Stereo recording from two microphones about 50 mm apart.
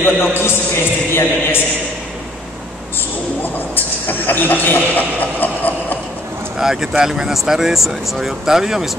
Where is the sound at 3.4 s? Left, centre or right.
Left.